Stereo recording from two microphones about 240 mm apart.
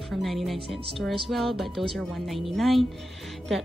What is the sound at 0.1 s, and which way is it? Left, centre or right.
Speech, centre.